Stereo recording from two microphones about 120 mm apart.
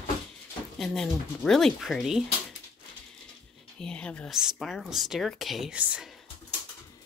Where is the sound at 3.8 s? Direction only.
10° left (ahead or behind).